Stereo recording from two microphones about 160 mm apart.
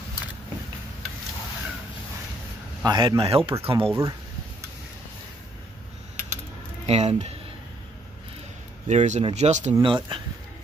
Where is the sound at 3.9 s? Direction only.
20° right (ahead or behind).